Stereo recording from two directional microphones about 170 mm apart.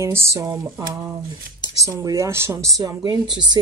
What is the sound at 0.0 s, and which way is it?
Speech, 15° right (ahead or behind).